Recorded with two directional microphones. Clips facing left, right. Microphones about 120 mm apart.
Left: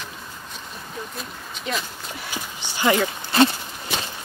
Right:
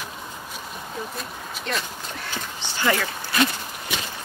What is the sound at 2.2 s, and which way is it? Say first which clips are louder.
Horse: even; 15° left (ahead or behind).